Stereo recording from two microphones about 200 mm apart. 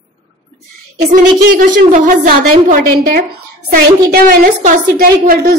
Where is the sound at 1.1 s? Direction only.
40° right (ahead or behind).